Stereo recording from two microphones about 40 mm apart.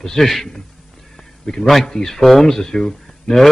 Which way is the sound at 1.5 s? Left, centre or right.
Left.